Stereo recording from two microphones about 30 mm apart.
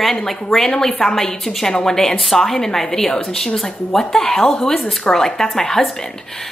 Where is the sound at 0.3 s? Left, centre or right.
Centre.